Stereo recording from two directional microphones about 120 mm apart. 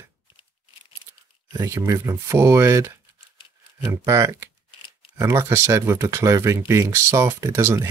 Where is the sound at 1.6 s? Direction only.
25° right (ahead or behind).